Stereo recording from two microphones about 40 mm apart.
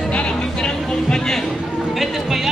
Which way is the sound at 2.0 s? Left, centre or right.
Centre.